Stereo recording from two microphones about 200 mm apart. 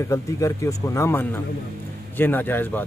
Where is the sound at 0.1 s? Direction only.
15° left (ahead or behind).